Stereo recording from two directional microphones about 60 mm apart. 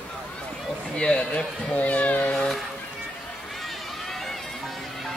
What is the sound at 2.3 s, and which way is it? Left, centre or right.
Speech, centre.